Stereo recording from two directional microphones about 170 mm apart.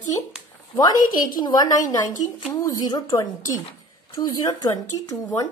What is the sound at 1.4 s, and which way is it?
Speech, 20° left (ahead or behind).